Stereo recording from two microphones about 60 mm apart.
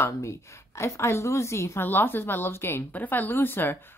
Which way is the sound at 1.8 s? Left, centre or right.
Left.